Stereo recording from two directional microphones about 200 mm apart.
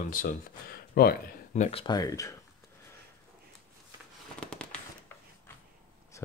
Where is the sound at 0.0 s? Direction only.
45° left (ahead or behind).